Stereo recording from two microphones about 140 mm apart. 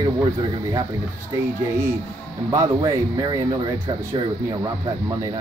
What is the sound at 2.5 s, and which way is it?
Speech, 25° right (ahead or behind).